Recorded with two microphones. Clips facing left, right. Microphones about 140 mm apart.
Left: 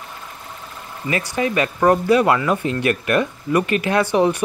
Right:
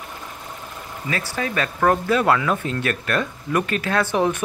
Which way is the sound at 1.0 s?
15° left (ahead or behind).